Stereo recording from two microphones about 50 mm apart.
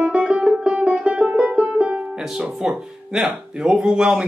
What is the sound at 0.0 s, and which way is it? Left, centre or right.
Music, centre.